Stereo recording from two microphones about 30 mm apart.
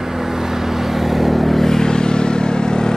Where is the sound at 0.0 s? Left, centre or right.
Centre.